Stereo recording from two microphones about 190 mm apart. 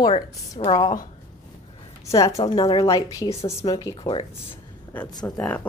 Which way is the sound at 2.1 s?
15° left (ahead or behind).